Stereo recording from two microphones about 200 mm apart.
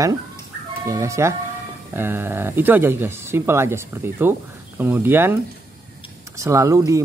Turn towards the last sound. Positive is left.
turn(degrees=-15)  # may be behind; listen again after turning